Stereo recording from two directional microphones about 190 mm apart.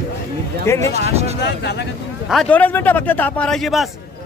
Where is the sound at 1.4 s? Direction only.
65° left (ahead or behind).